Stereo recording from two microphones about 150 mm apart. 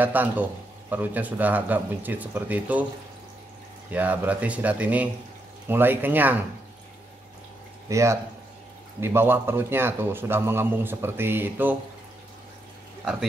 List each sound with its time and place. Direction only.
0.0 s a man's voice: 10° right (ahead or behind)
3.9 s a man's voice: 10° right (ahead or behind)
7.9 s a man's voice: 20° right (ahead or behind)